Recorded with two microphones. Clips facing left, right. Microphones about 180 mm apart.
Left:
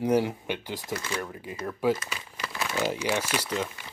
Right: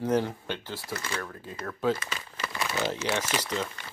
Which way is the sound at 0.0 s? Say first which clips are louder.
Left 2 dB; 10° left (ahead or behind).